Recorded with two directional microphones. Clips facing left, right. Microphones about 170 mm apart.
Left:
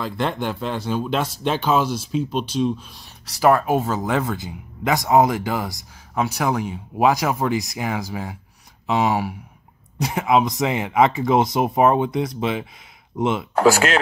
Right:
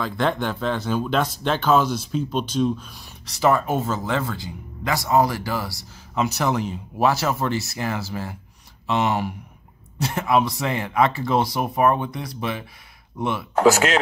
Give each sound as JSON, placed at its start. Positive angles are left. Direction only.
{"t": 0.0, "sound": "speech", "side_deg": 5}
{"t": 9.9, "sound": "speech", "side_deg": 15}